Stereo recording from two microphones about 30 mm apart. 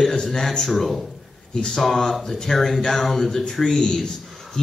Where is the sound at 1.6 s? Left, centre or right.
Left.